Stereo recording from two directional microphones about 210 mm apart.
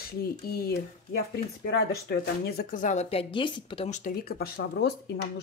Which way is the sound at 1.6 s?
50° left (ahead or behind).